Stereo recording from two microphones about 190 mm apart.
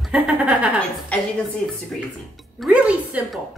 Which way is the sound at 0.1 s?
5° right (ahead or behind).